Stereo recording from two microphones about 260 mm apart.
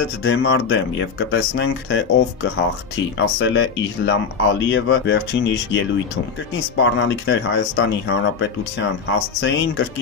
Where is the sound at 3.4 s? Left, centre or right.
Left.